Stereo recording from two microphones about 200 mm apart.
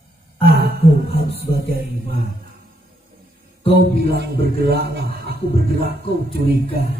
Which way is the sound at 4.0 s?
50° right (ahead or behind).